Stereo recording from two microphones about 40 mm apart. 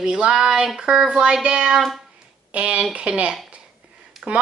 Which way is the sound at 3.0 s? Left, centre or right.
Right.